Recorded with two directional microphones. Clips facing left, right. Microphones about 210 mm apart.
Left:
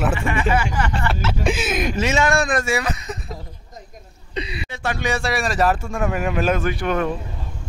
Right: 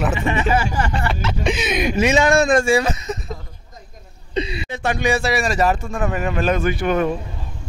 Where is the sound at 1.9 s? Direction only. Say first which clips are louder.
Right 5 dB; 15° right (ahead or behind).